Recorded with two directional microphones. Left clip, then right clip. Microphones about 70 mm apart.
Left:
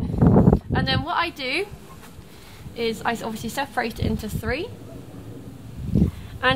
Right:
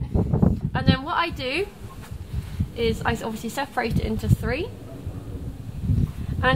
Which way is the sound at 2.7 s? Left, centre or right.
Left.